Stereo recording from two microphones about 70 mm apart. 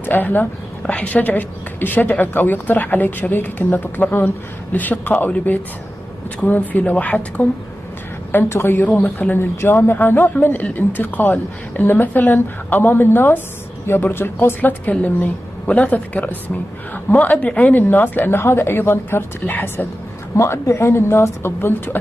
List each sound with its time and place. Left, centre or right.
0.0 s a woman's voice: left
8.3 s a woman's voice: left
20.3 s a woman's voice: left